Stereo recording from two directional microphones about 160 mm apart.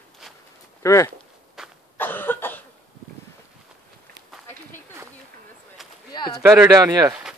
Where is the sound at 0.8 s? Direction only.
20° left (ahead or behind).